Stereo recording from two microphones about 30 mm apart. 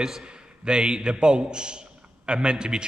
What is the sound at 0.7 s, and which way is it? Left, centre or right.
A man's voice, right.